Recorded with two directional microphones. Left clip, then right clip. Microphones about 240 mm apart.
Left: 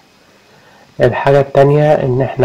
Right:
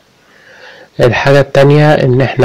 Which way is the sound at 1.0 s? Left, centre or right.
Right.